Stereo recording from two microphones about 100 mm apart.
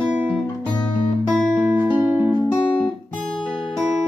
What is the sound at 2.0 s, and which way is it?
Music, 20° right (ahead or behind).